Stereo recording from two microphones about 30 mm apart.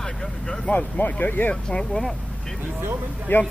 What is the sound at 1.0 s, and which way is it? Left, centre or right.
Speech, left.